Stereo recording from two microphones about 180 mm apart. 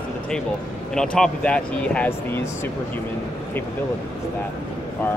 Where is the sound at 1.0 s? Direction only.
5° left (ahead or behind).